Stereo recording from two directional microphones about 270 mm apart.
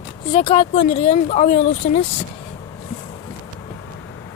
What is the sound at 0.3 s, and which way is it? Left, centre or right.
Speech, left.